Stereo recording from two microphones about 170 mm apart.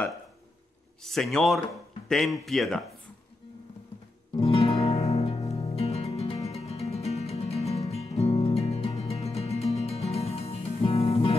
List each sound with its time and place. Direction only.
1.0 s speech: centre (ahead or behind)
4.4 s music: 35° left (ahead or behind)